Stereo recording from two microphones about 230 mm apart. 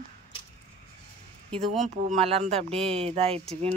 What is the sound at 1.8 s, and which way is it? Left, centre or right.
Speech, right.